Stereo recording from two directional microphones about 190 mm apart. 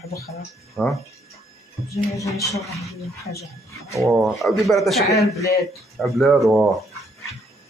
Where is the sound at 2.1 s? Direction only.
15° left (ahead or behind).